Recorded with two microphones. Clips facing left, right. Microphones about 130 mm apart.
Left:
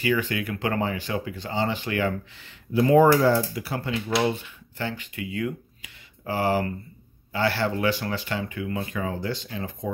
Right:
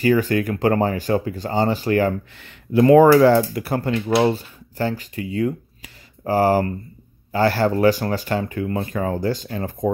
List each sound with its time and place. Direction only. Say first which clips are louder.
0.0 s speech: right 7 dB; 40° right (ahead or behind)
2.3 s speech: right 6 dB; 55° right (ahead or behind)
4.2 s speech: right 6 dB; 35° right (ahead or behind)